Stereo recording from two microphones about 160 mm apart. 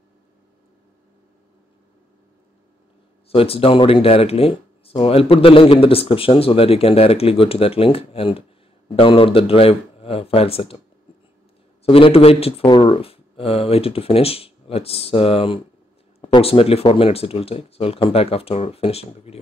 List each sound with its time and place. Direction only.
3.3 s speech: 35° left (ahead or behind)
11.8 s speech: 35° left (ahead or behind)